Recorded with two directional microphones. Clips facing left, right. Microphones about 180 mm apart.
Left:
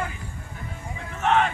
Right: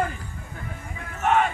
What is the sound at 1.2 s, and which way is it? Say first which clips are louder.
Speech: even; 5° right (ahead or behind).